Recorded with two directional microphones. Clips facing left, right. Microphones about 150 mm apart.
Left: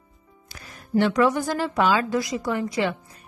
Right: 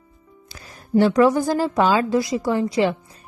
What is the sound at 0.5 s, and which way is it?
A woman's voice, 35° right (ahead or behind).